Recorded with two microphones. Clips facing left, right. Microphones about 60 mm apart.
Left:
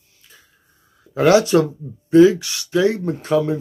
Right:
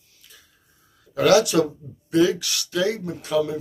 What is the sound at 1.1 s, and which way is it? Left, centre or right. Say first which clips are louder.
Speech: left 3 dB; left.